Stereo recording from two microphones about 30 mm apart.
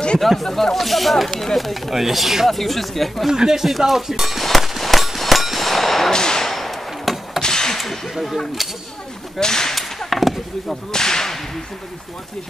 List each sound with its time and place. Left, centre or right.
0.2 s speech: centre
0.7 s speech: centre
3.3 s speech: centre
4.5 s fireworks: centre
5.7 s clang: centre
6.0 s a sound: left
6.4 s a sound: centre
7.4 s a sound: left
7.7 s whip: centre
8.1 s speech: centre
9.4 s whip: centre
10.0 s speech: centre
10.9 s whip: left